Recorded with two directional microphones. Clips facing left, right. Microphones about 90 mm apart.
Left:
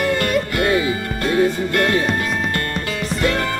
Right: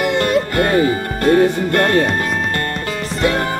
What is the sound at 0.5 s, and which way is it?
Music, 45° right (ahead or behind).